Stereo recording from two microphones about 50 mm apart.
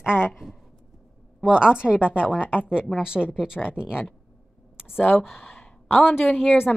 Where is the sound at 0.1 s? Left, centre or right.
Left.